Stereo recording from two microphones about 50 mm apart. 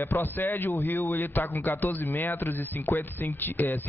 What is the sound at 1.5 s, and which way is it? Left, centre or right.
Speech, left.